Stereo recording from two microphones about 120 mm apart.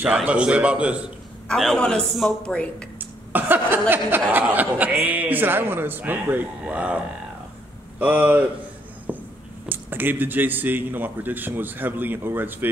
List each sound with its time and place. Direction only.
0.0 s speech: 10° right (ahead or behind)
1.5 s speech: 5° left (ahead or behind)
3.0 s a sound: 15° right (ahead or behind)
3.9 s speech: 15° right (ahead or behind)
8.0 s speech: 15° right (ahead or behind)
9.7 s speech: 15° right (ahead or behind)